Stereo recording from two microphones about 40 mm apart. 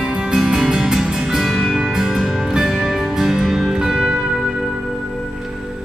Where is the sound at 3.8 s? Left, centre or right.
Centre.